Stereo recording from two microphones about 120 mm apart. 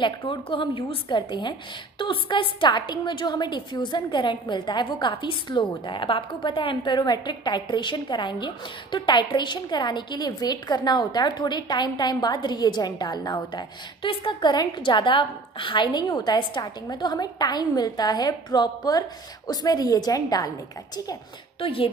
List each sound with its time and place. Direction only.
0.0 s a woman's voice: 45° left (ahead or behind)
21.5 s a woman's voice: 50° left (ahead or behind)